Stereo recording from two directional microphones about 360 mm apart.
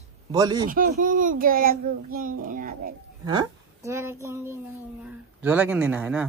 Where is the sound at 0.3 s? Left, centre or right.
Centre.